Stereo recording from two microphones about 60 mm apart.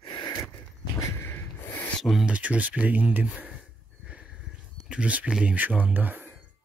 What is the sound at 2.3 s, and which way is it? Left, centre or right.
Speech, right.